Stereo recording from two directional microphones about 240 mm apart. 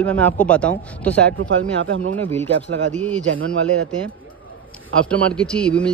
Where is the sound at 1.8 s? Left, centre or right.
Right.